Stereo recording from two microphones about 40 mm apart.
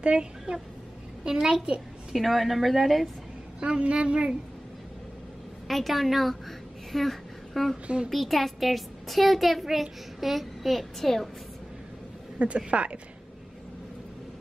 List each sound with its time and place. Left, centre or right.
0.0 s a woman's voice: right
2.1 s a child's voice: centre
3.5 s a woman's voice: right
5.7 s a child's voice: centre
7.8 s a woman's voice: right
8.1 s a child's voice: centre
12.4 s a woman's voice: right